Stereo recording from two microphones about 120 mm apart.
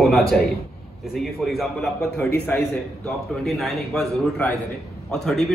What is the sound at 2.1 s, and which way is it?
Speech, 15° left (ahead or behind).